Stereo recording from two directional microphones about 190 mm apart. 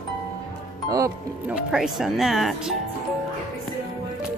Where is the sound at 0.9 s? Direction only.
15° right (ahead or behind).